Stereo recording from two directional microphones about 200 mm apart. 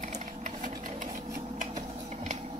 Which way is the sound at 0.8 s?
40° right (ahead or behind).